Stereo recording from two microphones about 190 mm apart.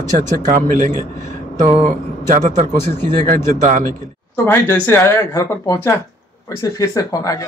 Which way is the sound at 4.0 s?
10° left (ahead or behind).